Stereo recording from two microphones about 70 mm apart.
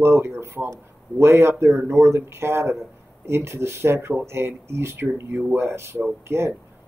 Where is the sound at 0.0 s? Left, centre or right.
Right.